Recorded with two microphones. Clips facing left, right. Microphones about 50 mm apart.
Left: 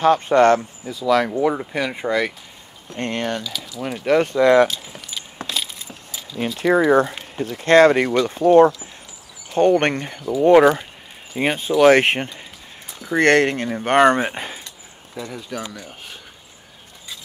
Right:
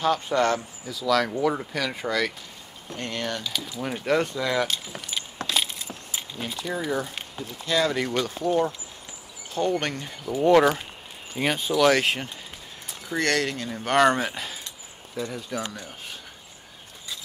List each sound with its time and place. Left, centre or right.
0.0 s speech: left
3.0 s speech: left
3.4 s speech: centre
4.0 s speech: left
4.3 s speech: left
5.4 s a sound: centre
6.6 s speech: left
8.5 s speech: left
10.5 s speech: left
12.0 s speech: left
15.5 s speech: centre